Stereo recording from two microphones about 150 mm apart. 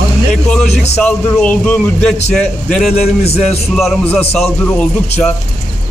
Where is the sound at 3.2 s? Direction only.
45° left (ahead or behind).